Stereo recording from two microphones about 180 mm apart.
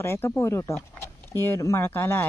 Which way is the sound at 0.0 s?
15° left (ahead or behind).